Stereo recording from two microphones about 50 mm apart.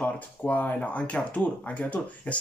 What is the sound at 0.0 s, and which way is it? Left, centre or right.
Speech, left.